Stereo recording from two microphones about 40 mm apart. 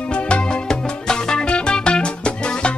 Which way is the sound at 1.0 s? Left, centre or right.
Left.